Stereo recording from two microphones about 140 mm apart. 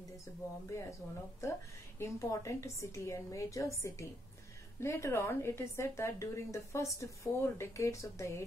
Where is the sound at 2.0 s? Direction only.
20° left (ahead or behind).